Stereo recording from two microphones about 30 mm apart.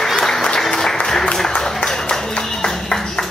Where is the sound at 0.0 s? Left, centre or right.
Centre.